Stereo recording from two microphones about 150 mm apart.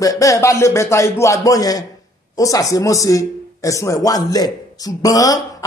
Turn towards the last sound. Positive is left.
turn(degrees=25)  # may be behind; listen again after turning